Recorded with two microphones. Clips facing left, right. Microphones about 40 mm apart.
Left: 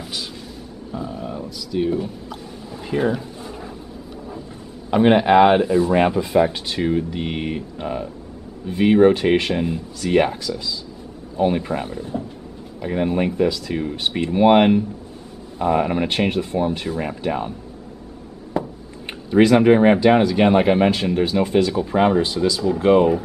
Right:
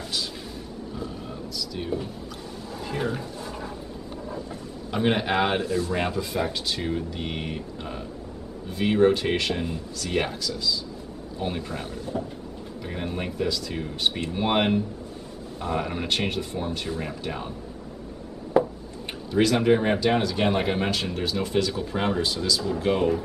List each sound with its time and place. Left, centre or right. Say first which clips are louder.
0.0 s vehicle: left 1 dB; centre
0.9 s a sound: left 9 dB; centre
4.9 s speech: left 10 dB; centre
11.3 s speech: left 11 dB; left
18.6 s a sound: right 4 dB; centre
19.0 s speech: left 8 dB; left